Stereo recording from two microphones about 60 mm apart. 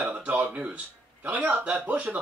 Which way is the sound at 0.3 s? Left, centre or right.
Right.